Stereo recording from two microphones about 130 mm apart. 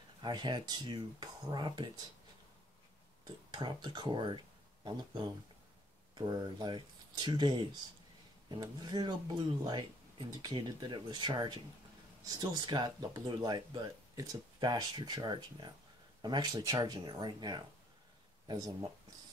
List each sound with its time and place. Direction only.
0.2 s speech: 35° right (ahead or behind)
3.5 s speech: 35° right (ahead or behind)